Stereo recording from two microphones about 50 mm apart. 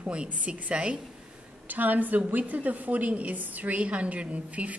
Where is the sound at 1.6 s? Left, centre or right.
Right.